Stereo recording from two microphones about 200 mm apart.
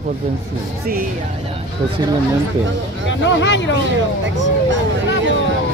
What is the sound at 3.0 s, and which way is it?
Speech, 65° left (ahead or behind).